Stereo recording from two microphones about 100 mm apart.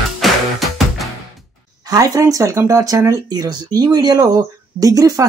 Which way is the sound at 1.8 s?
35° right (ahead or behind).